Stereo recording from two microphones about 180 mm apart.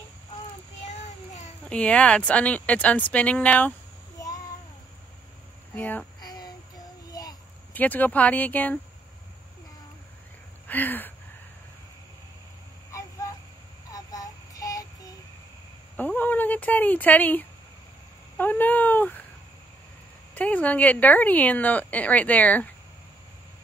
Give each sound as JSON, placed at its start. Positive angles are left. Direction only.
{"t": 1.7, "sound": "a woman's voice", "side_deg": 5}
{"t": 5.8, "sound": "a woman's voice", "side_deg": 10}
{"t": 6.2, "sound": "child singing", "side_deg": 20}
{"t": 7.1, "sound": "a sound", "side_deg": 20}
{"t": 7.7, "sound": "a woman's voice", "side_deg": 10}
{"t": 10.7, "sound": "a sound", "side_deg": 10}
{"t": 12.9, "sound": "a sound", "side_deg": 15}
{"t": 13.9, "sound": "child singing", "side_deg": 20}
{"t": 16.0, "sound": "a woman's voice", "side_deg": 10}
{"t": 20.3, "sound": "a woman's voice", "side_deg": 10}